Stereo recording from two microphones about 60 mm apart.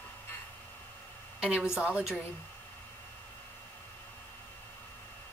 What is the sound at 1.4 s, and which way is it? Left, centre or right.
Speech, centre.